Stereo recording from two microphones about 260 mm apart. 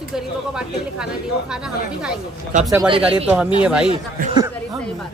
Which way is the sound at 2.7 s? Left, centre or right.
Centre.